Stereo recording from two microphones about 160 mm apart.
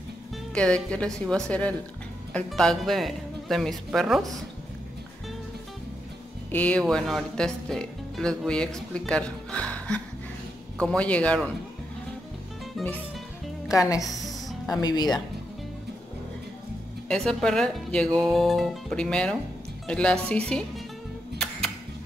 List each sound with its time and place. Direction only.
0.6 s speech: 5° left (ahead or behind)
6.5 s a man's voice: 10° left (ahead or behind)
12.8 s speech: centre (ahead or behind)
13.7 s speech: 20° left (ahead or behind)
17.1 s speech: 5° left (ahead or behind)
21.4 s music: 5° left (ahead or behind)